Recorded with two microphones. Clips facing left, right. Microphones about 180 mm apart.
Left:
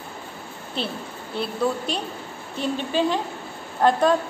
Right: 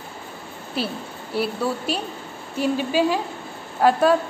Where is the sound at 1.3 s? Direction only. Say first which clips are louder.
Right 1 dB; 5° right (ahead or behind).